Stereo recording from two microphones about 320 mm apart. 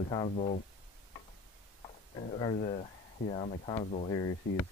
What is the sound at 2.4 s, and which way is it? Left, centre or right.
Speech, centre.